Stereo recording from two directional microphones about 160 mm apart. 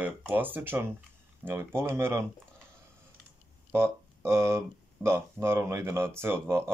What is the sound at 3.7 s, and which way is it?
Speech, 15° right (ahead or behind).